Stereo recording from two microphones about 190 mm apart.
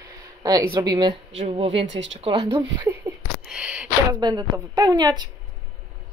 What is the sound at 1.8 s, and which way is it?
Speech, 75° right (ahead or behind).